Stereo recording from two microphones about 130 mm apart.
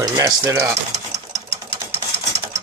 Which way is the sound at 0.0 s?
30° right (ahead or behind).